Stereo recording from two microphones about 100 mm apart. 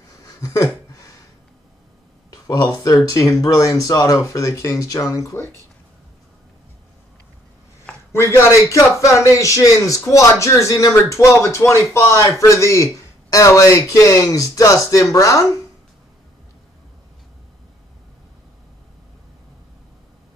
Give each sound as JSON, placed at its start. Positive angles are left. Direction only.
{"t": 0.1, "sound": "a sound", "side_deg": 35}
{"t": 2.3, "sound": "a man's voice", "side_deg": 35}
{"t": 8.1, "sound": "a man's voice", "side_deg": 30}